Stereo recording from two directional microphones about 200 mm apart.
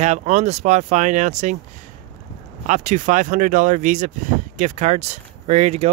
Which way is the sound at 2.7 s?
35° right (ahead or behind).